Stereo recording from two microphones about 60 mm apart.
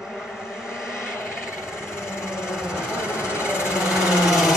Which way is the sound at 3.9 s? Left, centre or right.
Centre.